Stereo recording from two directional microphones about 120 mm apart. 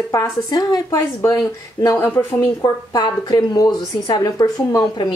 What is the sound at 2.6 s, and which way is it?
Speech, 35° left (ahead or behind).